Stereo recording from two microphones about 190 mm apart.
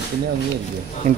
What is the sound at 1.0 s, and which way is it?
Speech, 40° right (ahead or behind).